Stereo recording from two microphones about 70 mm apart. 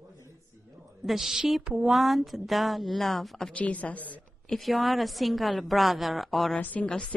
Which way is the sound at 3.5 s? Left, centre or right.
Left.